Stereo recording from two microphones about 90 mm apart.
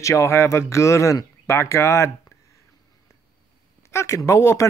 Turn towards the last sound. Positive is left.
turn(degrees=35)  # may be behind; listen again after turning